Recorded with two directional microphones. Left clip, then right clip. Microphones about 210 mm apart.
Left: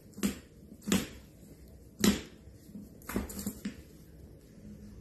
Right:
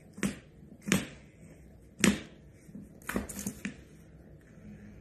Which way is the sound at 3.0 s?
25° right (ahead or behind).